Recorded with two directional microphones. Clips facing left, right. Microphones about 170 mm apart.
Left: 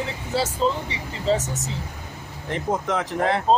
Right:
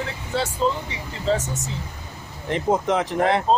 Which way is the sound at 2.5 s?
20° right (ahead or behind).